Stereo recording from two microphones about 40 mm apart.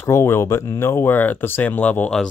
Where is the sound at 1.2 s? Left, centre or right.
Left.